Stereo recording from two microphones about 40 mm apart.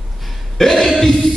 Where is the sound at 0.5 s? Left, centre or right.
Centre.